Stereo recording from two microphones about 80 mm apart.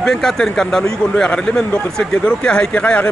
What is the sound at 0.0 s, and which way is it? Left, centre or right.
Speech, centre.